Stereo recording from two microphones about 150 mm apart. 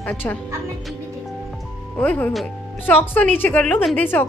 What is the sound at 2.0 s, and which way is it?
Speech, 10° left (ahead or behind).